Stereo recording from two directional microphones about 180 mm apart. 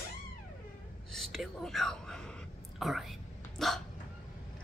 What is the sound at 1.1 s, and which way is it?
Speech, centre (ahead or behind).